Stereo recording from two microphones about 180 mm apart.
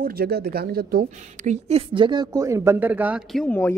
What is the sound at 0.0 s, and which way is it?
A woman's voice, 60° right (ahead or behind).